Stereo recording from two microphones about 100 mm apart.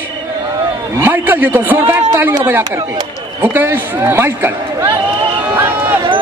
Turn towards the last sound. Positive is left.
turn(degrees=-20)  # may be behind; listen again after turning